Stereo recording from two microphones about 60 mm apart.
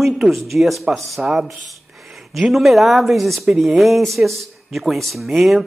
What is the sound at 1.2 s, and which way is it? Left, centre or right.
Speech, centre.